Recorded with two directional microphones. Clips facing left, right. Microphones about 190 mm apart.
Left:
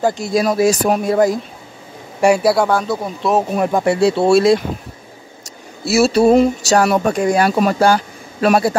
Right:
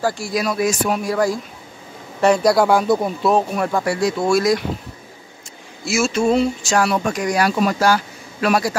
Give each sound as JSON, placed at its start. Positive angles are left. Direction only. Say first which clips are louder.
{"t": 0.0, "sound": "speech", "louder": "left 5 dB", "side_deg": 20}
{"t": 0.6, "sound": "speech", "louder": "left 5 dB", "side_deg": 40}
{"t": 1.0, "sound": "speech", "louder": "left 6 dB", "side_deg": 20}
{"t": 2.1, "sound": "a man's voice", "louder": "left 1 dB", "side_deg": 10}
{"t": 2.7, "sound": "speech", "louder": "right 2 dB", "side_deg": -10}
{"t": 3.5, "sound": "speech", "louder": "left 5 dB", "side_deg": 20}
{"t": 5.9, "sound": "speech", "louder": "left 6 dB", "side_deg": 35}
{"t": 7.8, "sound": "a sound", "louder": "left 3 dB", "side_deg": 30}